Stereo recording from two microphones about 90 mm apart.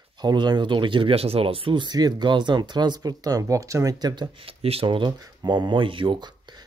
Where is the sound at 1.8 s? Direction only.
50° right (ahead or behind).